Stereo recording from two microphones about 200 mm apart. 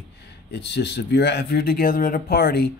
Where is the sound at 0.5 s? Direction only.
55° left (ahead or behind).